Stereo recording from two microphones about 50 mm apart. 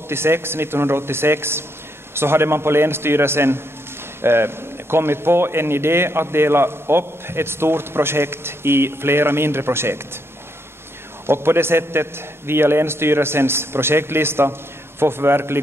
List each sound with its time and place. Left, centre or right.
0.1 s a man's voice: right
11.2 s a man's voice: right